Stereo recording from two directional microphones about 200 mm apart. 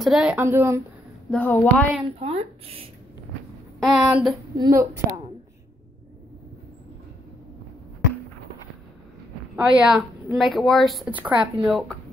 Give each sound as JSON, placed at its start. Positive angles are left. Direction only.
{"t": 0.0, "sound": "a woman's voice", "side_deg": -5}
{"t": 1.3, "sound": "speech", "side_deg": 10}
{"t": 2.0, "sound": "speech", "side_deg": -30}
{"t": 3.8, "sound": "speech", "side_deg": 0}
{"t": 4.6, "sound": "a woman's voice", "side_deg": -15}
{"t": 9.6, "sound": "speech", "side_deg": -5}